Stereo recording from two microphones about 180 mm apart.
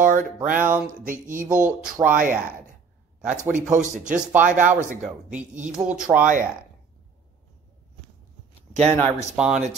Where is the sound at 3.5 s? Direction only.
45° right (ahead or behind).